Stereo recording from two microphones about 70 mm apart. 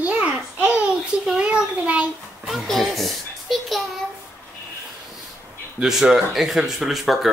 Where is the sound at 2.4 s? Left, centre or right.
Centre.